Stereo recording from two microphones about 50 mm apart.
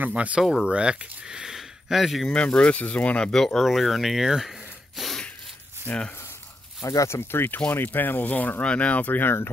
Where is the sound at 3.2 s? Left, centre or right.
Centre.